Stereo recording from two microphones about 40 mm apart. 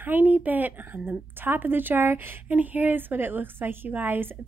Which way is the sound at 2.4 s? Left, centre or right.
Right.